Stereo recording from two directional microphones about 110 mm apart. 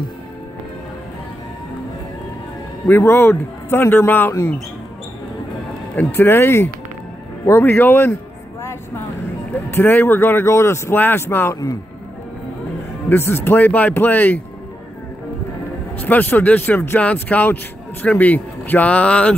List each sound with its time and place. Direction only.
2.9 s speech: 20° left (ahead or behind)
5.9 s speech: 20° left (ahead or behind)
9.5 s speech: 20° left (ahead or behind)
13.1 s speech: 20° left (ahead or behind)
16.0 s speech: 15° left (ahead or behind)